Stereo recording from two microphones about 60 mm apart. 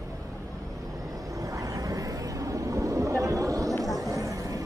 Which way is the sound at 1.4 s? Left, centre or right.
Right.